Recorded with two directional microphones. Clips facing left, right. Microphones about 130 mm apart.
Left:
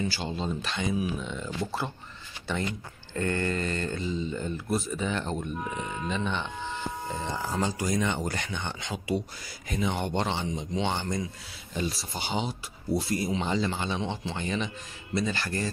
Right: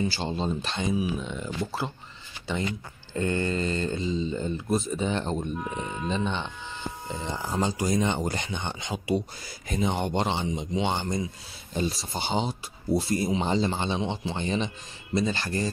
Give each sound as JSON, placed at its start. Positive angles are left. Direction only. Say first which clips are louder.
{"t": 0.1, "sound": "speech", "louder": "right 3 dB", "side_deg": -30}
{"t": 3.2, "sound": "speech", "louder": "right 2 dB", "side_deg": -20}
{"t": 11.7, "sound": "speech", "louder": "right 3 dB", "side_deg": -30}